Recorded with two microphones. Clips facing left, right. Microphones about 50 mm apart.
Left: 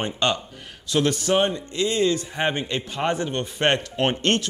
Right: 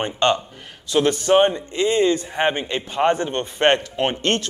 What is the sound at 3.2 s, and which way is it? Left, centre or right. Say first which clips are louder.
Speech: right 3 dB; right.